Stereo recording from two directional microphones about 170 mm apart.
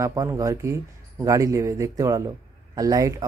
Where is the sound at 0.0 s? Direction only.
20° right (ahead or behind).